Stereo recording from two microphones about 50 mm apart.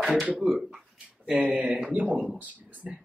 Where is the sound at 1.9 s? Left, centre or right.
Right.